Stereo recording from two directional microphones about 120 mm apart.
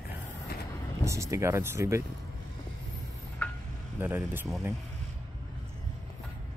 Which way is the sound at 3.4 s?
15° left (ahead or behind).